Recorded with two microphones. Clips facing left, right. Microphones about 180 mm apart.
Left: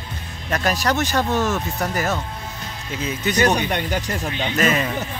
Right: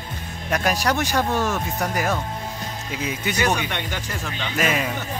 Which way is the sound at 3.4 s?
40° left (ahead or behind).